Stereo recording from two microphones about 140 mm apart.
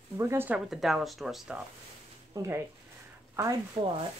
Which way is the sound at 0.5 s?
Centre (ahead or behind).